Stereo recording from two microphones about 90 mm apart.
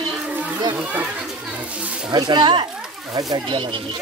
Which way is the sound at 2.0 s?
55° right (ahead or behind).